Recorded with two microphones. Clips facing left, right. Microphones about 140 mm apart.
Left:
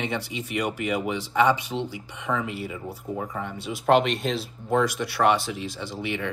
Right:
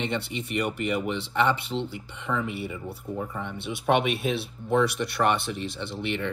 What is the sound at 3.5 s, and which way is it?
Speech, 60° right (ahead or behind).